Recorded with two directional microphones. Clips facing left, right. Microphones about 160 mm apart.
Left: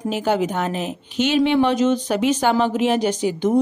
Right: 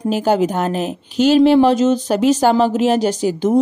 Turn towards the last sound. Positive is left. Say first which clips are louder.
# right 3 dB
turn(degrees=-35)  # may be behind; listen again after turning